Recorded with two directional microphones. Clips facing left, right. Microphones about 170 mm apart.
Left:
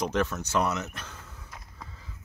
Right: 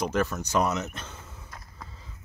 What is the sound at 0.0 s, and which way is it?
Speech, 5° right (ahead or behind).